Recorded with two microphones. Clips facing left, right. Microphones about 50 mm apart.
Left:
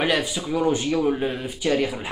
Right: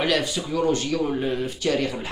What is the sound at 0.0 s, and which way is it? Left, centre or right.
Speech, centre.